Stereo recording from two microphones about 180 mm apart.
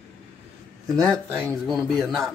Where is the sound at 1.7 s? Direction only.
Centre (ahead or behind).